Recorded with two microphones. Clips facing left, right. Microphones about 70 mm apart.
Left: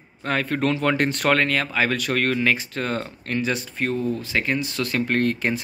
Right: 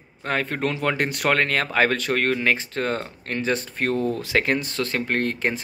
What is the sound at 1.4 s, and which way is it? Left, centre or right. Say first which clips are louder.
Speech: right 1 dB; right.